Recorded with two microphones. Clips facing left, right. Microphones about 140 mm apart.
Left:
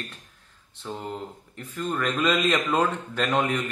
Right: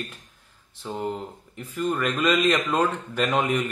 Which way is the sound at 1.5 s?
5° right (ahead or behind).